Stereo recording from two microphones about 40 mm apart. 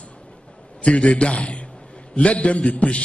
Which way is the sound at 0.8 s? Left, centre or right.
Left.